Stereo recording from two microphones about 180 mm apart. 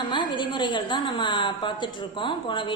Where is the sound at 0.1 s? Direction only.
25° left (ahead or behind).